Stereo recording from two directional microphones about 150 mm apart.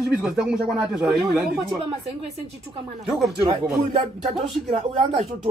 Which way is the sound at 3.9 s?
50° right (ahead or behind).